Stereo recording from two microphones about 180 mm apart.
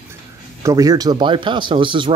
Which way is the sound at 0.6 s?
20° right (ahead or behind).